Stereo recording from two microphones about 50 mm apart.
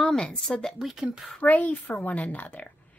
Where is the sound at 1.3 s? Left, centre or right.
Left.